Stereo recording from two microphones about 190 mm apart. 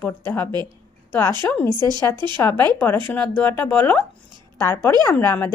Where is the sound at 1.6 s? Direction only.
20° right (ahead or behind).